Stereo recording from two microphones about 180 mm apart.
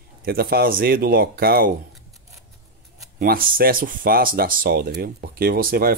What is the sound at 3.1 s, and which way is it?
Speech, 55° right (ahead or behind).